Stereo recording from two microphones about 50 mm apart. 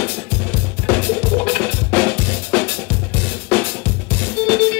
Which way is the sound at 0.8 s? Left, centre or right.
Left.